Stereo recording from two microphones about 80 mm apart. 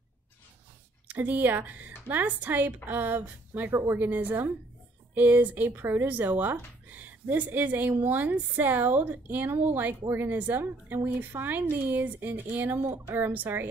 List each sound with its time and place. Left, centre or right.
1.0 s speech: right